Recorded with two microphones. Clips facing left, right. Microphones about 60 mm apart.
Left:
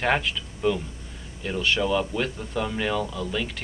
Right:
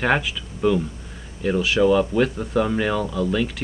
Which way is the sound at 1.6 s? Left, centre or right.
Centre.